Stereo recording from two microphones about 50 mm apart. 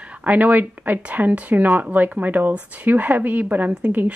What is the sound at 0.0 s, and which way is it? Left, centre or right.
Speech, right.